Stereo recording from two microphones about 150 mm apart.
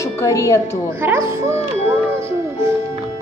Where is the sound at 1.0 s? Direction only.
15° right (ahead or behind).